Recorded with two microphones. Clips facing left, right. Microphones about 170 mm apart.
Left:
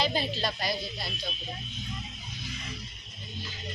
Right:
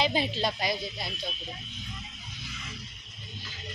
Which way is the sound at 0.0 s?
20° right (ahead or behind).